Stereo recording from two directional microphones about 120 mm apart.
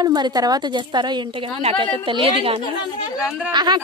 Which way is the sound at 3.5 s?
40° right (ahead or behind).